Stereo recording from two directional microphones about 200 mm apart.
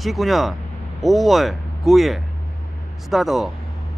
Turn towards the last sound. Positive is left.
turn(degrees=0)  # may be behind; listen again after turning